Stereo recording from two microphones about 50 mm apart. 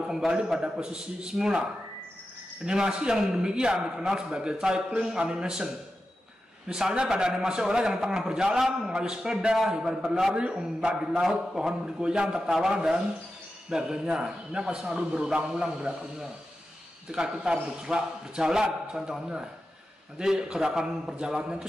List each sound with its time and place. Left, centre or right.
0.0 s a sound: centre
0.6 s a man's voice: centre
6.7 s a man's voice: centre